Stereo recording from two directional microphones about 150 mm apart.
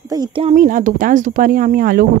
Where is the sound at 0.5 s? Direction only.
60° right (ahead or behind).